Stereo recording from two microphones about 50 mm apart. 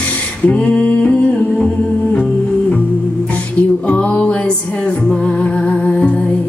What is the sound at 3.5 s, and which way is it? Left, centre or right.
Music, left.